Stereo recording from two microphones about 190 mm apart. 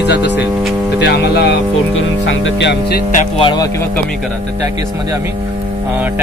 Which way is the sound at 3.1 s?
30° left (ahead or behind).